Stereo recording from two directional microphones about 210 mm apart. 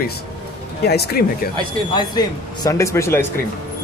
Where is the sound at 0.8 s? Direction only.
50° left (ahead or behind).